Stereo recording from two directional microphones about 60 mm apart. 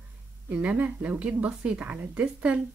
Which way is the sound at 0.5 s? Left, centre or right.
Right.